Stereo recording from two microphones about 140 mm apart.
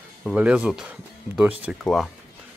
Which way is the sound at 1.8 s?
Centre (ahead or behind).